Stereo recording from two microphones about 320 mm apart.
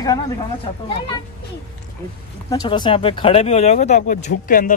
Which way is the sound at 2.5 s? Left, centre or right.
Centre.